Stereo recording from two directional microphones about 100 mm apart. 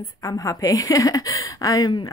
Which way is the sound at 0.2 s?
35° left (ahead or behind).